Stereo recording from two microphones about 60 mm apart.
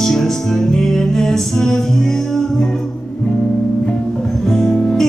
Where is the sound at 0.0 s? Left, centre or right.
Centre.